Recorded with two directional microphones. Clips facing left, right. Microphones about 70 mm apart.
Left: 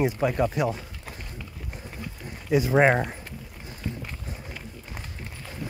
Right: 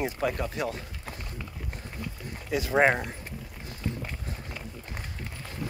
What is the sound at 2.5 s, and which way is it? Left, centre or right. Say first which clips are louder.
Speech: left 7 dB; centre.